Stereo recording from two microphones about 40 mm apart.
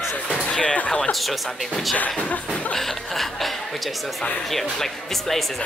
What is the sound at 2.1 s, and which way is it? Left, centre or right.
Speech, left.